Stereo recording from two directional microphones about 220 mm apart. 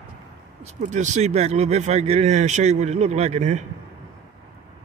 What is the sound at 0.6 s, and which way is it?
Speech, 35° right (ahead or behind).